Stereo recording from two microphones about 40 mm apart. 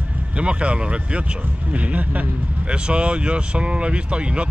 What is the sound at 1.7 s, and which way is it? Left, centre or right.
Speech, right.